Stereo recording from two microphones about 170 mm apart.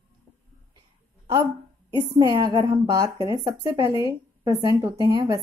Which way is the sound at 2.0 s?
20° right (ahead or behind).